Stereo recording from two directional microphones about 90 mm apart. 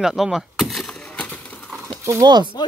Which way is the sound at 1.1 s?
15° left (ahead or behind).